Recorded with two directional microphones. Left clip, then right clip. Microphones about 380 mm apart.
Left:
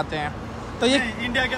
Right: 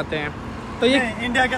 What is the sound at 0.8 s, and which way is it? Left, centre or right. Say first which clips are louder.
Speech: right 2 dB; left.